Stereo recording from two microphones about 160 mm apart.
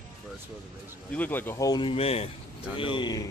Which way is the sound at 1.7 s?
30° left (ahead or behind).